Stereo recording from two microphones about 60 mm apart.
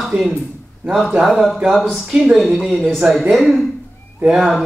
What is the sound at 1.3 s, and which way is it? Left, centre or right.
A man's voice, centre.